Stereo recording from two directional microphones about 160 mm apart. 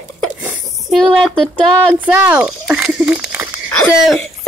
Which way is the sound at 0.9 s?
Centre (ahead or behind).